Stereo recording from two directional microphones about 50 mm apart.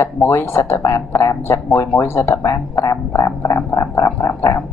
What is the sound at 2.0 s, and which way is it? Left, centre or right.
Speech, left.